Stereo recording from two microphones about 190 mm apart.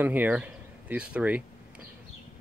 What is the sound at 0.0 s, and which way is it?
Speech, 10° right (ahead or behind).